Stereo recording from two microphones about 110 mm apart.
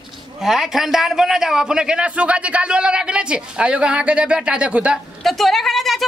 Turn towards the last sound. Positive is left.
turn(degrees=0)  # may be behind; listen again after turning